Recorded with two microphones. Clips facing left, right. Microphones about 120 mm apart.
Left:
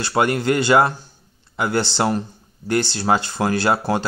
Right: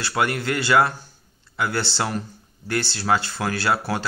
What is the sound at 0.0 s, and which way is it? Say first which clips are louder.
Speech: left 5 dB; 25° left (ahead or behind).